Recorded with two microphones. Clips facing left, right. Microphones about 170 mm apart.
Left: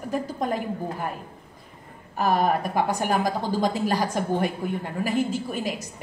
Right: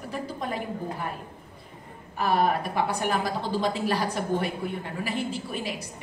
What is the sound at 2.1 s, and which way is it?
A woman's voice, 45° left (ahead or behind).